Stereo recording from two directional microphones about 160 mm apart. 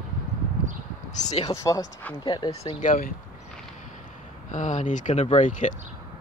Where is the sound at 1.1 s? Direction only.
45° left (ahead or behind).